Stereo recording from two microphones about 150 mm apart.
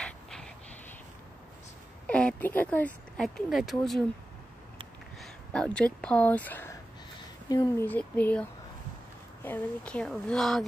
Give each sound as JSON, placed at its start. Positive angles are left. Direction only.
{"t": 0.0, "sound": "a sound", "side_deg": 5}
{"t": 2.0, "sound": "speech", "side_deg": 10}
{"t": 5.2, "sound": "a sound", "side_deg": 5}
{"t": 5.9, "sound": "speech", "side_deg": 10}
{"t": 7.4, "sound": "speech", "side_deg": 25}
{"t": 7.8, "sound": "speech", "side_deg": 10}